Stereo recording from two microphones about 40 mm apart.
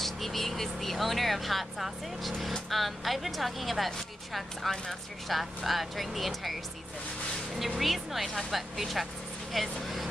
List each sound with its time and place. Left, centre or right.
0.0 s speech: centre
7.5 s speech: centre